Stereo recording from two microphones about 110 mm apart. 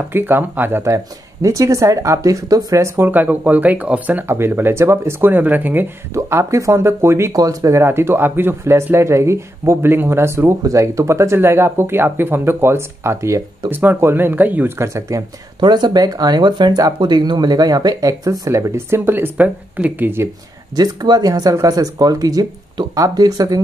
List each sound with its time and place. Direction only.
0.1 s speech: 20° right (ahead or behind)
3.1 s speech: 15° right (ahead or behind)
15.6 s speech: 40° right (ahead or behind); by 20.2 s 20° right (ahead or behind)
20.7 s speech: 35° right (ahead or behind)